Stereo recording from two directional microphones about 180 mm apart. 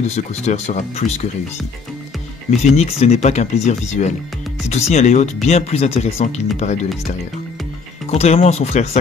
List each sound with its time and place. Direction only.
0.1 s speech: 40° left (ahead or behind)
2.6 s speech: 35° left (ahead or behind)
8.1 s speech: 35° left (ahead or behind)